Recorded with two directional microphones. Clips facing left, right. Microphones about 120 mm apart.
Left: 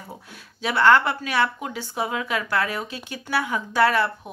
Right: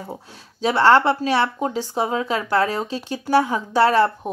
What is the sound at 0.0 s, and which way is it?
Speech, 30° right (ahead or behind).